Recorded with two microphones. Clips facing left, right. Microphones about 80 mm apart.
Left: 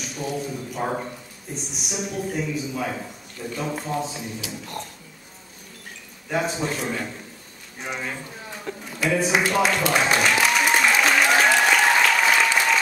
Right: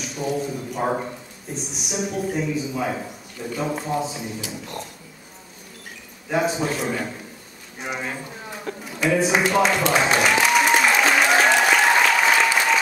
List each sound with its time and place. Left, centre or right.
0.2 s a man's voice: centre
6.2 s a man's voice: centre
7.8 s a sound: centre